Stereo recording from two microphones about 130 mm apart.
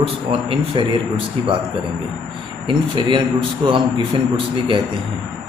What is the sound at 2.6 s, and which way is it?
A man's voice, 40° right (ahead or behind).